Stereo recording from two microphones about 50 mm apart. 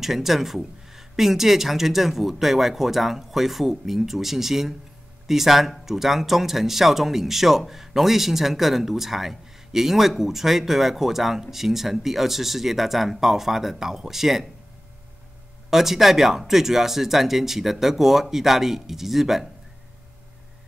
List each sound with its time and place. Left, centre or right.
0.0 s speech: centre
15.7 s speech: centre